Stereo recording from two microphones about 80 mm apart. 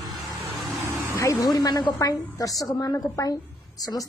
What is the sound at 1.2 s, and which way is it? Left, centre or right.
Speech, left.